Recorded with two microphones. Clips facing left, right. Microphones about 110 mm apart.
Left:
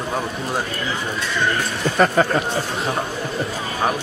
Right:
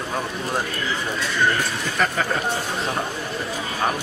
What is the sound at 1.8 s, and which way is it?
Speech, 40° left (ahead or behind).